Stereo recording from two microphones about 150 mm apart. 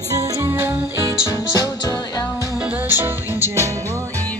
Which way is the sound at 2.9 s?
15° right (ahead or behind).